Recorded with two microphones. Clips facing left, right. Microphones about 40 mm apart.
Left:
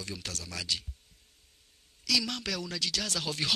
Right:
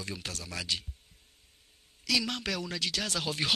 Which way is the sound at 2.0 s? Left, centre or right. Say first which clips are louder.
Right 1 dB; centre.